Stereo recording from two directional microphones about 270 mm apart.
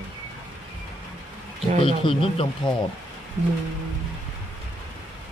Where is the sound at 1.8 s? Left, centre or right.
Centre.